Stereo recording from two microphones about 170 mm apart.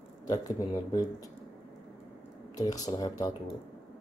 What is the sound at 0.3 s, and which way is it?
Speech, 20° left (ahead or behind).